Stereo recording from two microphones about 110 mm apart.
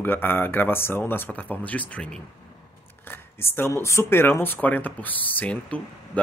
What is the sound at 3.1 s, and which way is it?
Speech, 20° left (ahead or behind).